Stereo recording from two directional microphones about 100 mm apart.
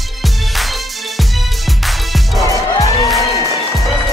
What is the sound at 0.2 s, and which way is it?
Music, centre (ahead or behind).